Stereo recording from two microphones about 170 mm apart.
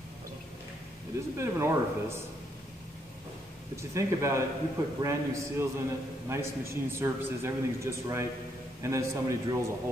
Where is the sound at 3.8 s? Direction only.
15° right (ahead or behind).